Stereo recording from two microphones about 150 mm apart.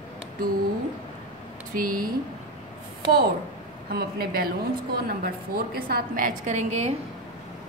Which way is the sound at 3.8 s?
90° right.